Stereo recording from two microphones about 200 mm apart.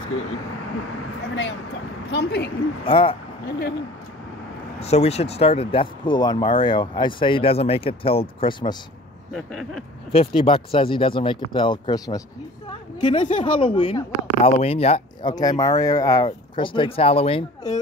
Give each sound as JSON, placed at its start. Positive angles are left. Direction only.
{"t": 1.3, "sound": "a sound", "side_deg": 60}
{"t": 2.8, "sound": "speech", "side_deg": 25}
{"t": 4.7, "sound": "speech", "side_deg": 30}
{"t": 9.3, "sound": "a sound", "side_deg": 0}
{"t": 10.1, "sound": "speech", "side_deg": 25}
{"t": 15.3, "sound": "speech", "side_deg": 20}